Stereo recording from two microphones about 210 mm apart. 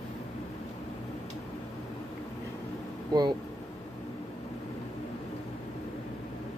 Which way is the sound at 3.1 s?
20° right (ahead or behind).